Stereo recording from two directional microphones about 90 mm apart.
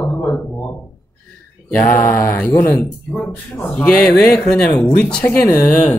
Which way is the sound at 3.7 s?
15° left (ahead or behind).